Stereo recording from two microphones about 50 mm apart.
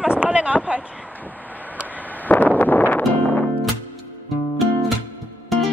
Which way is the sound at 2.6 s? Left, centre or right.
Left.